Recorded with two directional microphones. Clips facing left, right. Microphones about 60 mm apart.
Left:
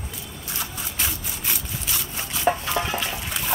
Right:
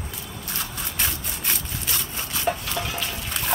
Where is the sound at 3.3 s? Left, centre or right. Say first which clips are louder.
Right 2 dB; centre.